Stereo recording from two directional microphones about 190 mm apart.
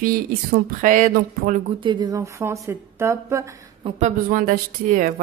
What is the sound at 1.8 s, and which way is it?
Speech, 25° right (ahead or behind).